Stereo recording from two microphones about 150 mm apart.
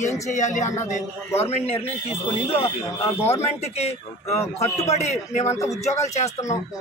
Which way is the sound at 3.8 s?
45° left (ahead or behind).